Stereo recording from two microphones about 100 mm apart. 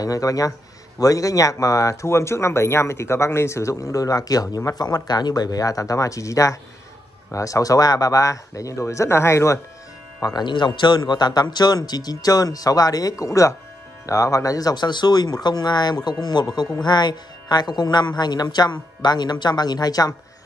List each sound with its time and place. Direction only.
0.0 s speech: 35° left (ahead or behind)
10.2 s speech: 45° left (ahead or behind)